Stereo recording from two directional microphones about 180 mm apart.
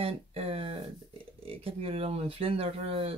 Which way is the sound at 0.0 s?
30° right (ahead or behind).